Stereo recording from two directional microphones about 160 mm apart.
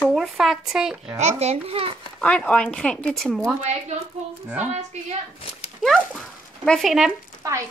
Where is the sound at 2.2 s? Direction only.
5° left (ahead or behind).